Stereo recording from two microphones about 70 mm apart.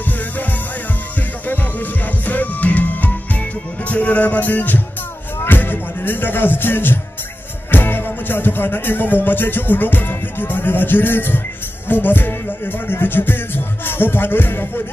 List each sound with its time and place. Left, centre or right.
2.2 s music: left
5.4 s speech: left
7.7 s music: left